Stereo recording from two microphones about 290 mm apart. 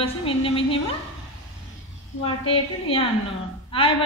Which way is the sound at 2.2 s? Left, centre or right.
Centre.